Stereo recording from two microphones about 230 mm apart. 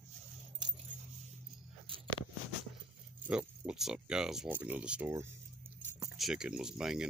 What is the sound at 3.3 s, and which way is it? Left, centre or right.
Speech, centre.